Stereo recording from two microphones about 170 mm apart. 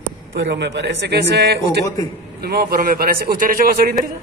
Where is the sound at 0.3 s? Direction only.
80° right; by 3.9 s 55° right (ahead or behind).